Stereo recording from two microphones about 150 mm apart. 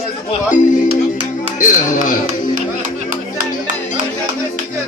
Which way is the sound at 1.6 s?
60° left (ahead or behind).